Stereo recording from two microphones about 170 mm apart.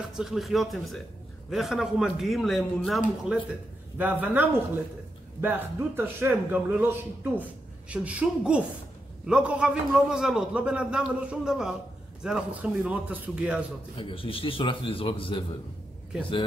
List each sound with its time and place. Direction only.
0.1 s a man's voice: centre (ahead or behind)
13.9 s a man's voice: 30° left (ahead or behind)